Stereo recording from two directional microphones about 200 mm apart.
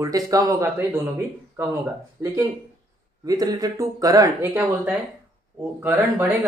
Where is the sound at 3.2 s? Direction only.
20° right (ahead or behind).